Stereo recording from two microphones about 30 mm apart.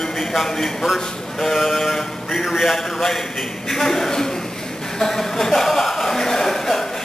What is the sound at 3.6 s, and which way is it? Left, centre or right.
A woman's voice, centre.